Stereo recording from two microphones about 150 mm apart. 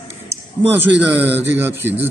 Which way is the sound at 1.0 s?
15° right (ahead or behind).